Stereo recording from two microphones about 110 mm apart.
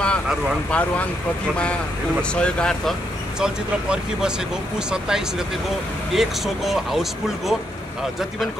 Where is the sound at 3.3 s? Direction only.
5° right (ahead or behind).